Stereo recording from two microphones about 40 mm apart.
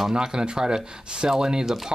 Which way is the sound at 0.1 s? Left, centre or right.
Centre.